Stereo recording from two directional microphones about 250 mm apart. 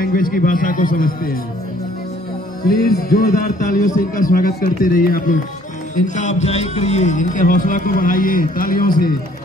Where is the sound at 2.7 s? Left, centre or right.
Left.